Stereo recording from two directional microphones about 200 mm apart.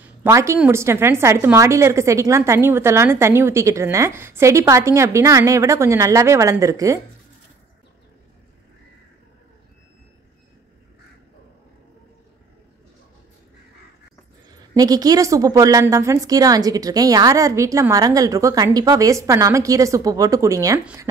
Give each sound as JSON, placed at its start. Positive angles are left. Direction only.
{"t": 0.0, "sound": "a woman's voice", "side_deg": -10}
{"t": 14.7, "sound": "a woman's voice", "side_deg": -20}